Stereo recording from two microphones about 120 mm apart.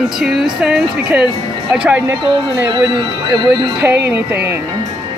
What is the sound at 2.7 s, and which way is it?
Speech, 40° right (ahead or behind).